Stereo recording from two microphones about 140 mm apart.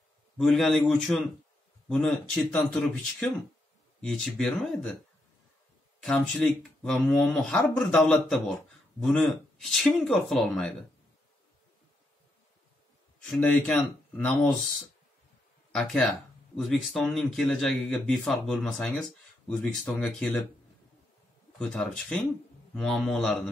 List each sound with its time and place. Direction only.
0.4 s speech: centre (ahead or behind)
6.0 s speech: 5° left (ahead or behind)
13.3 s speech: 5° left (ahead or behind)
15.7 s speech: 5° left (ahead or behind)
21.5 s speech: 5° left (ahead or behind)